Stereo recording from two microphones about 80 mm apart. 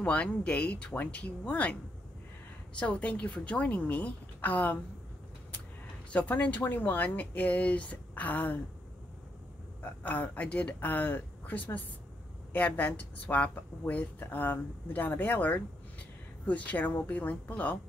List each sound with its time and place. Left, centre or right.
0.0 s speech: centre
6.1 s speech: left
9.8 s speech: centre